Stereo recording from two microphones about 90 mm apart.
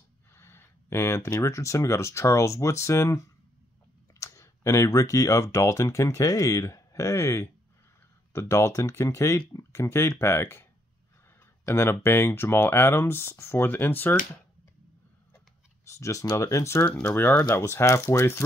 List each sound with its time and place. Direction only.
0.4 s speech: 30° left (ahead or behind)
15.8 s speech: 35° left (ahead or behind)